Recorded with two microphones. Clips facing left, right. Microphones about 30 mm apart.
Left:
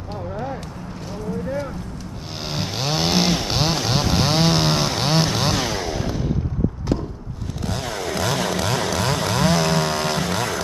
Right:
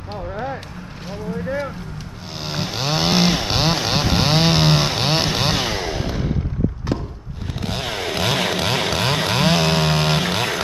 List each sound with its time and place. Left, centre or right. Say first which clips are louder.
0.1 s a sound: right 2 dB; right
1.1 s vehicle: right 1 dB; right
2.3 s chainsaw: right 1 dB; centre
7.6 s chainsaw: right 2 dB; right